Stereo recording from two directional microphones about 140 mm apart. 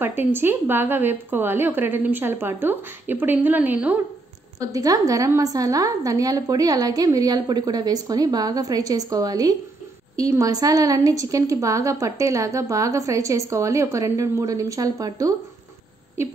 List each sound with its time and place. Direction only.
0.0 s a woman's voice: 15° right (ahead or behind)
4.6 s a woman's voice: 25° right (ahead or behind)